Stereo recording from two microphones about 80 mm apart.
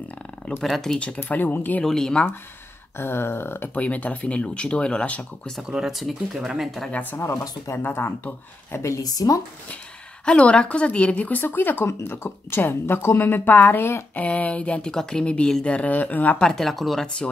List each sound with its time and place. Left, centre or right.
0.6 s speech: centre
0.9 s speech: centre
1.9 s speech: centre
3.0 s speech: left
3.7 s speech: centre
5.6 s speech: centre
6.9 s speech: left
7.2 s speech: left
8.7 s a woman's voice: left
10.2 s speech: centre
16.4 s speech: centre